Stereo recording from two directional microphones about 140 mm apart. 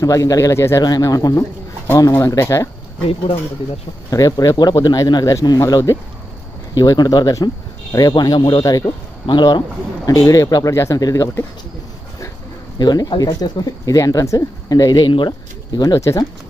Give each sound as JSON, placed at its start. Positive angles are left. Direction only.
{"t": 0.0, "sound": "speech", "side_deg": 25}
{"t": 4.1, "sound": "speech", "side_deg": 25}
{"t": 12.7, "sound": "speech", "side_deg": 30}